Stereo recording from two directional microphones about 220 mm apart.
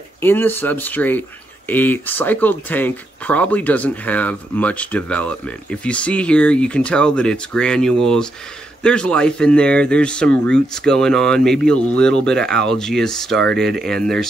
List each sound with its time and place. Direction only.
0.2 s speech: 10° left (ahead or behind)